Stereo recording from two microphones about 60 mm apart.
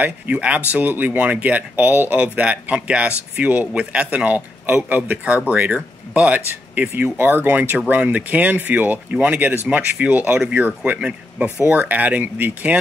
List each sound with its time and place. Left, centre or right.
0.0 s a man's voice: right
11.0 s speech: centre